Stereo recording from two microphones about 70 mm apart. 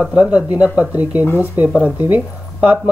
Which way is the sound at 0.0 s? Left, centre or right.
Centre.